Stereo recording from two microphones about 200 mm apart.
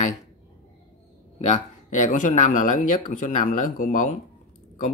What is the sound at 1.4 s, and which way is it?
Speech, 35° left (ahead or behind).